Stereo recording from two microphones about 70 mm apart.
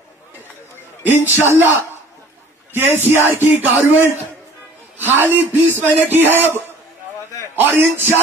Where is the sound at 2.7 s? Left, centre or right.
Right.